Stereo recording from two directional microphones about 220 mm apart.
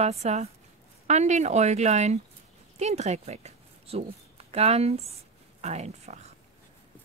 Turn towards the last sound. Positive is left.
turn(degrees=-30)  # may be behind; listen again after turning